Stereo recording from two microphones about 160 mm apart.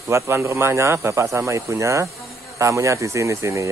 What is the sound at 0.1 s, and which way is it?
Speech, 20° right (ahead or behind).